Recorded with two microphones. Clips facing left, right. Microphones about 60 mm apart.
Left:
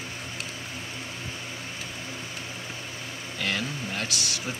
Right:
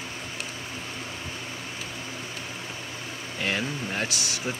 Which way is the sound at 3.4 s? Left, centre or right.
Right.